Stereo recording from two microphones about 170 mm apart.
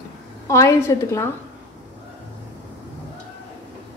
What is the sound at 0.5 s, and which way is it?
Speech, 15° left (ahead or behind).